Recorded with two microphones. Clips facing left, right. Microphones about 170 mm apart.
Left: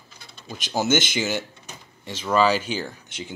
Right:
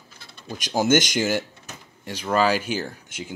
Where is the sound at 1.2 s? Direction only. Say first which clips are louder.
Right 3 dB; 10° right (ahead or behind).